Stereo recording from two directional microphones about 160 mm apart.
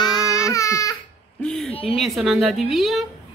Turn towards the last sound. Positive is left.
turn(degrees=0)  # may be behind; listen again after turning